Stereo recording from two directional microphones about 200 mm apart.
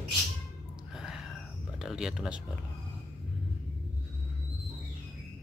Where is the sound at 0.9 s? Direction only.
Centre (ahead or behind).